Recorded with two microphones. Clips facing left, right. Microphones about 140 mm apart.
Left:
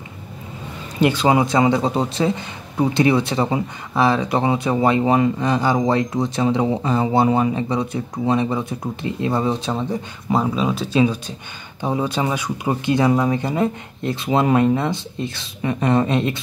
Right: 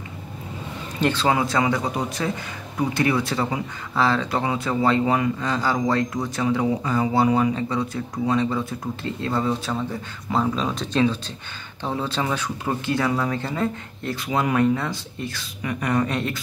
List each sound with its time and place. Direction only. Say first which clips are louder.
1.0 s speech: left 5 dB; 15° left (ahead or behind)